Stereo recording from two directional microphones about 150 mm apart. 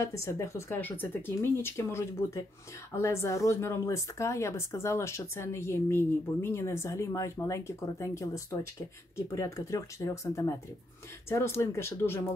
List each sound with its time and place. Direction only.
0.0 s speech: 20° left (ahead or behind)